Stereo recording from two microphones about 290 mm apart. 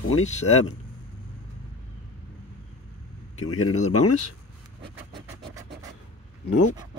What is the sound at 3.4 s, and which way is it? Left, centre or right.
Speech, left.